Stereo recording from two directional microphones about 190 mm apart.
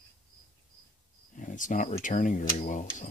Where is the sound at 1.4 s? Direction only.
45° left (ahead or behind).